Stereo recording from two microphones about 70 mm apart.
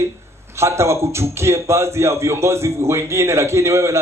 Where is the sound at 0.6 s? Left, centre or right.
Right.